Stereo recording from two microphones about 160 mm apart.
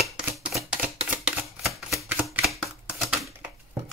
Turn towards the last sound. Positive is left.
turn(degrees=0)  # may be behind; listen again after turning